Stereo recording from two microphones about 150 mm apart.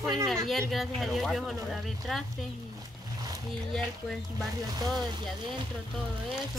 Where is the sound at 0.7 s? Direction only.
Centre (ahead or behind).